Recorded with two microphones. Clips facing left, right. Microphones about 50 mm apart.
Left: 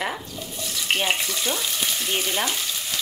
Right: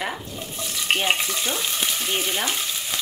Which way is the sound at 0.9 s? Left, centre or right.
Centre.